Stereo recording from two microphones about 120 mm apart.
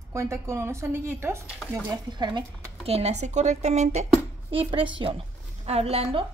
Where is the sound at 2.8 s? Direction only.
60° right (ahead or behind).